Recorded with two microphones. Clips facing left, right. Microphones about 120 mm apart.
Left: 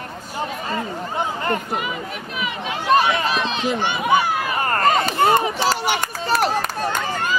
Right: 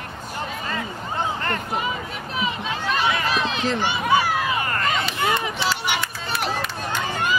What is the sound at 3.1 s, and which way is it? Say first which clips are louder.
Run: left 2 dB; 25° left (ahead or behind).